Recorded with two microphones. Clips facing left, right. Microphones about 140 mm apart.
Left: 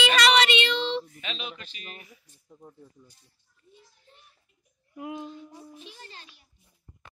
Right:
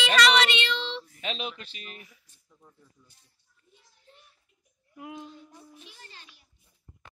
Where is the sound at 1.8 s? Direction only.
35° left (ahead or behind).